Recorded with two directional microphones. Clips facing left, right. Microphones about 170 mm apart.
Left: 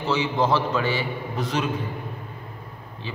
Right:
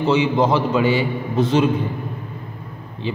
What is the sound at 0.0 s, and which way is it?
A man's voice, 20° right (ahead or behind).